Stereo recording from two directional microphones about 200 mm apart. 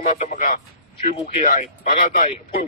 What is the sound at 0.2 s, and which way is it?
Speech, 35° left (ahead or behind).